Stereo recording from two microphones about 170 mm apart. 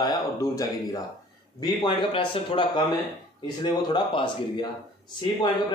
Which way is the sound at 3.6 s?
25° left (ahead or behind).